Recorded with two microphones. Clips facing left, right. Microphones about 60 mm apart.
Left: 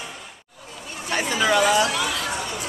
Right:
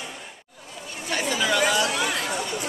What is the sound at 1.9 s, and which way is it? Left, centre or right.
Chatter, right.